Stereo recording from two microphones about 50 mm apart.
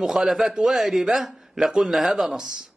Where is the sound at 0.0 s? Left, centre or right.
Centre.